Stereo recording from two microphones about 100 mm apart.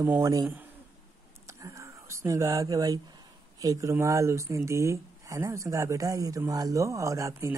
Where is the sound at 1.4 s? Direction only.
30° right (ahead or behind).